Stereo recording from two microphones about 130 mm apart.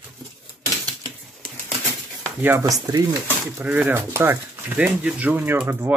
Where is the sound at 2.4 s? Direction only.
15° right (ahead or behind).